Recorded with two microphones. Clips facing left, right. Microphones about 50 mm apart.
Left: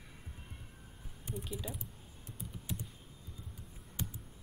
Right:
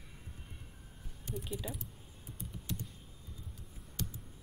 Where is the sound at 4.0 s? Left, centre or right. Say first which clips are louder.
Even; centre.